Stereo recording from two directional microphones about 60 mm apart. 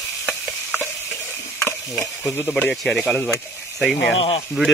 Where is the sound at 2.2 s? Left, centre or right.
Left.